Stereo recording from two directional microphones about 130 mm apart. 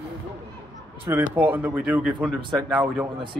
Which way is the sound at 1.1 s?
20° right (ahead or behind).